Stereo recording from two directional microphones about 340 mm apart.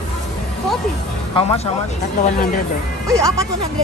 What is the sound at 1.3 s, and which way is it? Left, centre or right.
Speech, centre.